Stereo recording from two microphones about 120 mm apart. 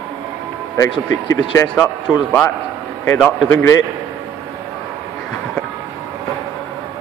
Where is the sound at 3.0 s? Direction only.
20° left (ahead or behind).